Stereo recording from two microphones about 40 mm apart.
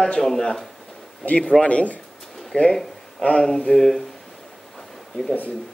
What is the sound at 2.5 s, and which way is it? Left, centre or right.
Speech, left.